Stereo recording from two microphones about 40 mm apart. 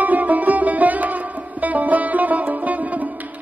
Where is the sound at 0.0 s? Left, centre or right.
Right.